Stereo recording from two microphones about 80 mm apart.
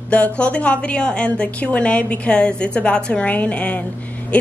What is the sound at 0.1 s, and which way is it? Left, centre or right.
A woman's voice, centre.